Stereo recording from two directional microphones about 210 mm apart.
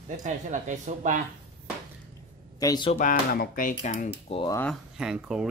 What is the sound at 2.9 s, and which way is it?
Speech, 40° left (ahead or behind).